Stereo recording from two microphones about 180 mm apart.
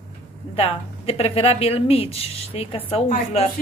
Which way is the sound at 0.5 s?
35° left (ahead or behind).